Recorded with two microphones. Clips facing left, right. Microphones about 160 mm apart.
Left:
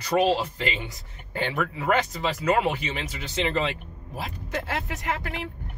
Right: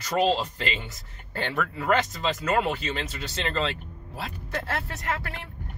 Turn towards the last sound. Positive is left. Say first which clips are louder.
# left 1 dB
turn(degrees=15)  # may be behind; listen again after turning